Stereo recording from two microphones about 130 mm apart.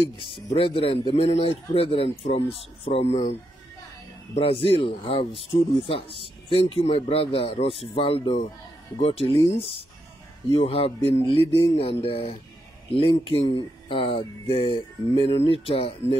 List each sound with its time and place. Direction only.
0.2 s speech: 45° left (ahead or behind)
4.4 s speech: 45° left (ahead or behind)